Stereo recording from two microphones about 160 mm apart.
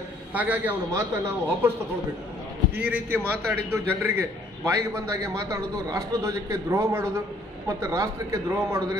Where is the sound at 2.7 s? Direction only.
10° right (ahead or behind).